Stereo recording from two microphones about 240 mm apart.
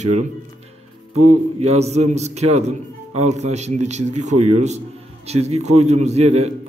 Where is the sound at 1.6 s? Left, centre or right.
Right.